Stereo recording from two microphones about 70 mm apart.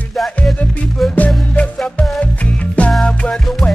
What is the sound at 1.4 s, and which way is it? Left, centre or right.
Music, centre.